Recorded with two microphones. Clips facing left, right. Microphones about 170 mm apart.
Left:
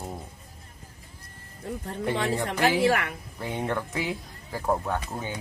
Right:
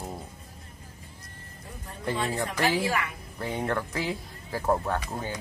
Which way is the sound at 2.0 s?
70° left (ahead or behind).